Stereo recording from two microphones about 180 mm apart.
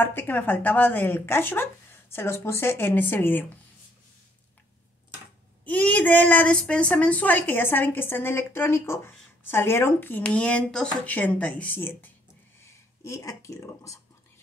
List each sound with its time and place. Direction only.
0.0 s a woman's voice: 10° left (ahead or behind)
5.7 s a woman's voice: 10° left (ahead or behind)